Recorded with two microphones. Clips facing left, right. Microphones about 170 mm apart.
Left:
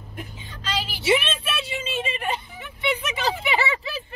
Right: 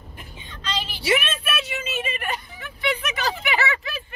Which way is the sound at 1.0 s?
30° left (ahead or behind).